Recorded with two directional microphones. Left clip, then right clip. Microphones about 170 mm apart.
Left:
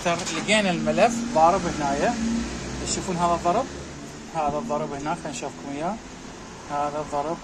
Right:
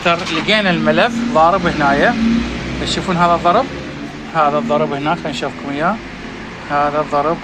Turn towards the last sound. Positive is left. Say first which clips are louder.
# right 11 dB
turn(degrees=0)  # may be behind; listen again after turning